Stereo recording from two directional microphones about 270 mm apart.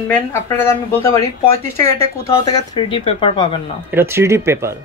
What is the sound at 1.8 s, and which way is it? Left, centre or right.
Speech, centre.